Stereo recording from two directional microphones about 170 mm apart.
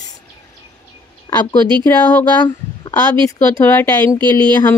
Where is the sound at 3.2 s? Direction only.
15° left (ahead or behind).